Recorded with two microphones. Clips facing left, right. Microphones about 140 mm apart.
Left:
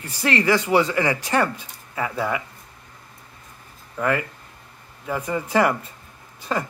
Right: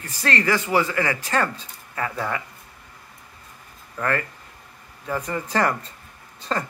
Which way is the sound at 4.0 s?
15° left (ahead or behind).